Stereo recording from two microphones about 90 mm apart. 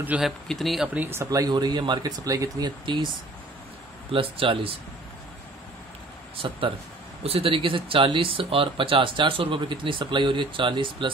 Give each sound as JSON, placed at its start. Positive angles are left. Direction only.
{"t": 0.1, "sound": "speech", "side_deg": -15}
{"t": 0.5, "sound": "speech", "side_deg": 0}
{"t": 0.9, "sound": "speech", "side_deg": -25}
{"t": 1.3, "sound": "speech", "side_deg": -45}
{"t": 2.8, "sound": "speech", "side_deg": -60}
{"t": 4.1, "sound": "speech", "side_deg": -85}
{"t": 6.4, "sound": "speech", "side_deg": -70}
{"t": 7.2, "sound": "speech", "side_deg": -90}